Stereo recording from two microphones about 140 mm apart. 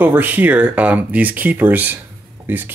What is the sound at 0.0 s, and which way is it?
Speech, 15° right (ahead or behind).